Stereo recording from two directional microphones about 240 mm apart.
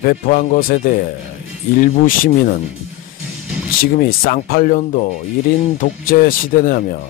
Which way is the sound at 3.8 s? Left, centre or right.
Left.